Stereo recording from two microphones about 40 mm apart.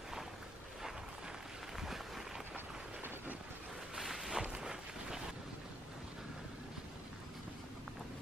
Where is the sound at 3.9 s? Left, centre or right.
Centre.